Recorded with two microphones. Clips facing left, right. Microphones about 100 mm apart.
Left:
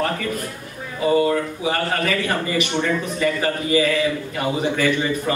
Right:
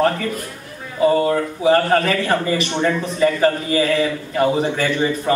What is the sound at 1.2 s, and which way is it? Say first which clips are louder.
A man's voice: right 3 dB; 35° right (ahead or behind).